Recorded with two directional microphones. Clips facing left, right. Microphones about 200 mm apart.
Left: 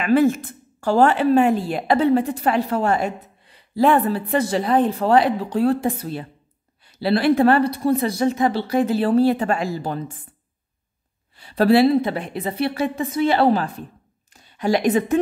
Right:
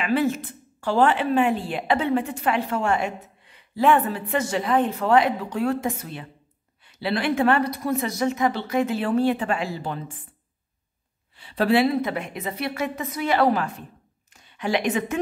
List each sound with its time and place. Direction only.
0.0 s a woman's voice: 45° left (ahead or behind)
11.3 s a woman's voice: 40° left (ahead or behind)